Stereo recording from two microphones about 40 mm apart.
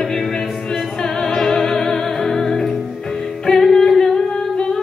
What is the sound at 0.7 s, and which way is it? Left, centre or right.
Music, centre.